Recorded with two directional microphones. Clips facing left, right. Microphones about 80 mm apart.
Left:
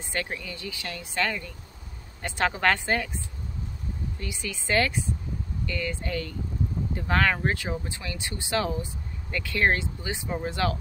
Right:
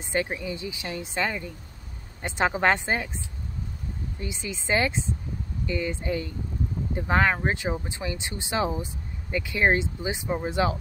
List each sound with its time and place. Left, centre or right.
0.0 s speech: centre
4.2 s speech: right